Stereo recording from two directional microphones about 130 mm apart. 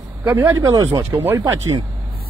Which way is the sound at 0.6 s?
25° right (ahead or behind).